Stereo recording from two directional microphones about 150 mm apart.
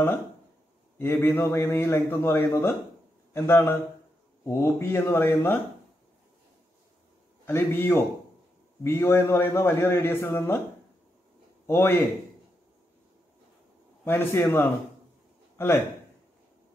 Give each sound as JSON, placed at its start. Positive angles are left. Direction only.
{"t": 0.9, "sound": "a man's voice", "side_deg": 15}
{"t": 7.4, "sound": "a man's voice", "side_deg": 15}
{"t": 11.6, "sound": "a man's voice", "side_deg": 15}
{"t": 14.0, "sound": "a man's voice", "side_deg": 15}
{"t": 15.5, "sound": "a sound", "side_deg": 15}